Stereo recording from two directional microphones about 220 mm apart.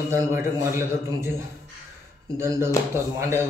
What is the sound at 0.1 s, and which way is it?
A man's voice, 10° right (ahead or behind).